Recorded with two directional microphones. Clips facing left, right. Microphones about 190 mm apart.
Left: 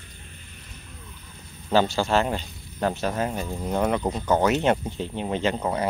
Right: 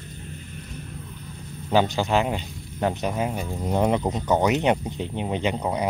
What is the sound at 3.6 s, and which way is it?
Speech, 20° right (ahead or behind).